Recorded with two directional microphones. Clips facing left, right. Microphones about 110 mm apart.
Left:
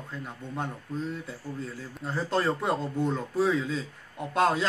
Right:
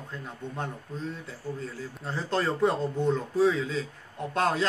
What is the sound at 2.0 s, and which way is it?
Speech, 5° left (ahead or behind).